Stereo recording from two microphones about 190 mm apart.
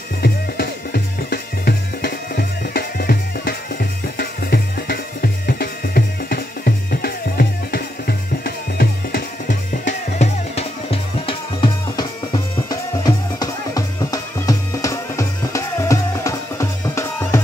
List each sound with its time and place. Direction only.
0.2 s music: 55° left (ahead or behind); by 17.4 s 15° left (ahead or behind)